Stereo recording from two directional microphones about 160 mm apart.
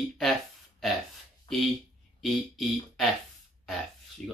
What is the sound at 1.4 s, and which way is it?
Speech, centre (ahead or behind).